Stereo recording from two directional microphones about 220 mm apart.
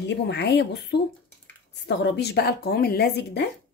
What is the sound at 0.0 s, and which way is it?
A woman's voice, 50° left (ahead or behind).